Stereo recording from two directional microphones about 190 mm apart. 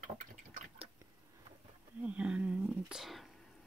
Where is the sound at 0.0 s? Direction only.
45° right (ahead or behind).